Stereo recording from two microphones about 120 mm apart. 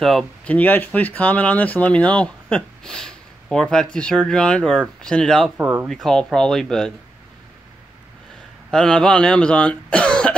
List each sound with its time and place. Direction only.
0.0 s speech: 5° left (ahead or behind)
5.6 s speech: 15° right (ahead or behind)
5.9 s speech: centre (ahead or behind)
8.6 s speech: 5° left (ahead or behind)